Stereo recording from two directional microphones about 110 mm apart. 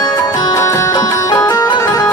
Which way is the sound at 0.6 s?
25° left (ahead or behind).